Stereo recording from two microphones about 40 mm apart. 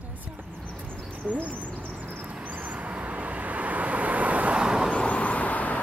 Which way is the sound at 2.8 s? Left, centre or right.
Right.